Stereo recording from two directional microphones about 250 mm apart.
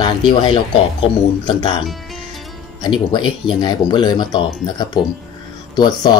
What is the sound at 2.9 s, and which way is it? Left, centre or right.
Speech, centre.